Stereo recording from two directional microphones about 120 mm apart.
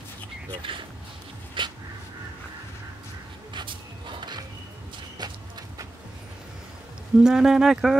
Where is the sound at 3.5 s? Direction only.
40° right (ahead or behind).